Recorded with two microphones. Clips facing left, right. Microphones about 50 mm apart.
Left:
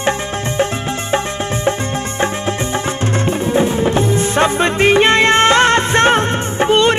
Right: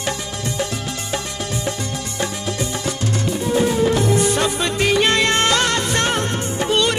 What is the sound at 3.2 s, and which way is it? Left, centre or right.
Music, left.